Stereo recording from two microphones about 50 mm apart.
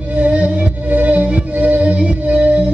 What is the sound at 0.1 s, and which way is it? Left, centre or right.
Music, right.